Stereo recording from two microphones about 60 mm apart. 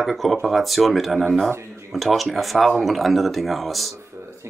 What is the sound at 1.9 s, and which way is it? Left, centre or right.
Speech, centre.